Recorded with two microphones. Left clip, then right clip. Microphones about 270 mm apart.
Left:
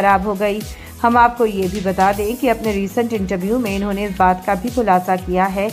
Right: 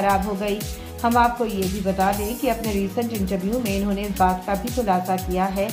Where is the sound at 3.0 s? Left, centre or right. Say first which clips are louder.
Left 6 dB; left.